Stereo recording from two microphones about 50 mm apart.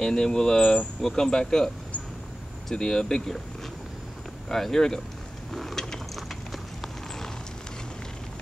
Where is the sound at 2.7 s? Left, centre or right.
Centre.